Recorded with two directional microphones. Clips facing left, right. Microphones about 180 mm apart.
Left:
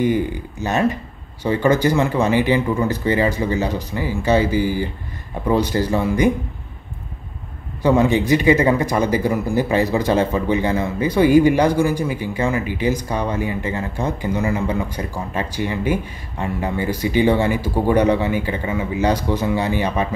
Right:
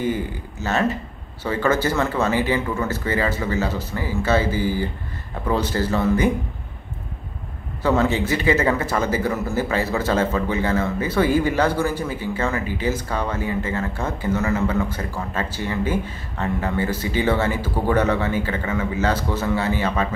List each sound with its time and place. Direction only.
0.0 s speech: 15° left (ahead or behind)
7.8 s speech: 15° left (ahead or behind)